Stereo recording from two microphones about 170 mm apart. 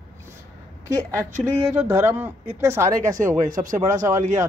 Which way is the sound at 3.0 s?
50° right (ahead or behind).